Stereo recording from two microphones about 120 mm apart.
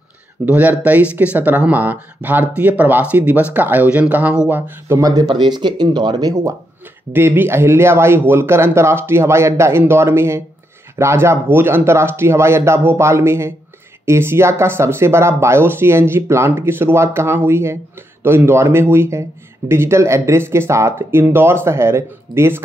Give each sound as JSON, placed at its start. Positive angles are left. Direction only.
{"t": 0.5, "sound": "speech", "side_deg": -15}
{"t": 5.3, "sound": "speech", "side_deg": -40}
{"t": 7.1, "sound": "speech", "side_deg": -20}